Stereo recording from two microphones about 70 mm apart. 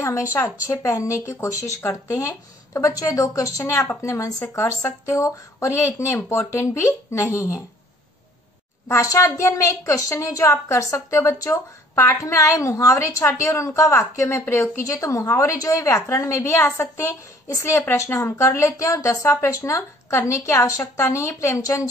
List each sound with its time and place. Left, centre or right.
0.0 s a woman's voice: left
3.6 s speech: left
4.0 s a woman's voice: left
8.8 s a woman's voice: left
14.9 s a woman's voice: left